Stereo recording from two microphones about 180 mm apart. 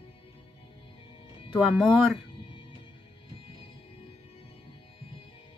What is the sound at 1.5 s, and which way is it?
Speech, centre (ahead or behind).